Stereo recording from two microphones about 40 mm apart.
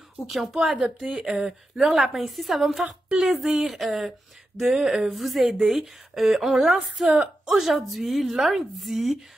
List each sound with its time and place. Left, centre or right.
0.3 s a woman's voice: centre
1.8 s a woman's voice: centre
7.2 s speech: centre
7.6 s a woman's voice: centre